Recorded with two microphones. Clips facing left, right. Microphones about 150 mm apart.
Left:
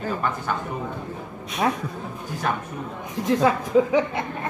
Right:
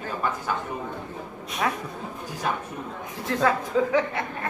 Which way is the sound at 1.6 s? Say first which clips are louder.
Left 4 dB; 25° left (ahead or behind).